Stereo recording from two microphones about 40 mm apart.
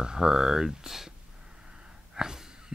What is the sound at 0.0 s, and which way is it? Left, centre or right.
Speech, centre.